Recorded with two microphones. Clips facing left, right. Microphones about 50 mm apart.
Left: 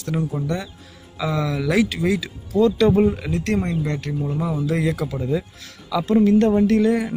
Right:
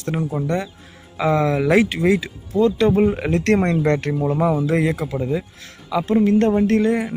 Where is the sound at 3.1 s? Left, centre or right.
Right.